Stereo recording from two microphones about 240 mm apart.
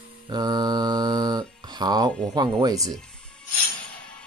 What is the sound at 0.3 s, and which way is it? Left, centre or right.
Speech, centre.